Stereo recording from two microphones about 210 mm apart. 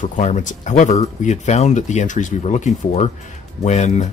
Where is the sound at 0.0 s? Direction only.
35° left (ahead or behind).